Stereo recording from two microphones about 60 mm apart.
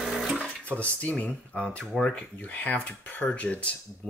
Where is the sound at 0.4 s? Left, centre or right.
Left.